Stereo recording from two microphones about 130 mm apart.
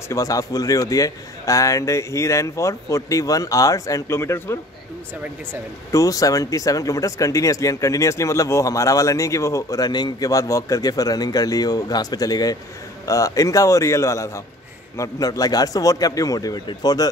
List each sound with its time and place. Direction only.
0.1 s speech: 25° left (ahead or behind)
5.9 s speech: 25° left (ahead or behind)